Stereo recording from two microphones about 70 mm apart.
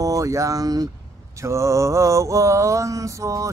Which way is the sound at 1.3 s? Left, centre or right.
Right.